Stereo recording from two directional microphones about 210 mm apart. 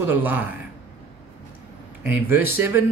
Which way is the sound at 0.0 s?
10° right (ahead or behind).